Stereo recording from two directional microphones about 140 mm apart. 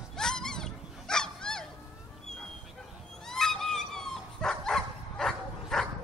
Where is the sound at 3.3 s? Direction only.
5° left (ahead or behind).